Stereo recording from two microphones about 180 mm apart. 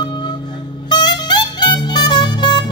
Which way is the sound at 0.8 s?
25° left (ahead or behind).